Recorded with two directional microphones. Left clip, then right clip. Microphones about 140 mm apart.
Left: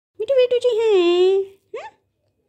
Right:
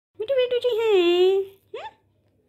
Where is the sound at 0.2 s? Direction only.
40° left (ahead or behind).